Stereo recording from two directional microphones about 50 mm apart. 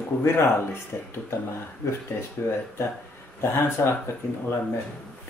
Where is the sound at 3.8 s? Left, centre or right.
Left.